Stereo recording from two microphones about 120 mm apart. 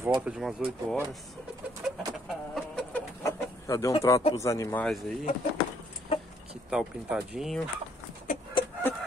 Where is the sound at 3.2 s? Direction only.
25° left (ahead or behind).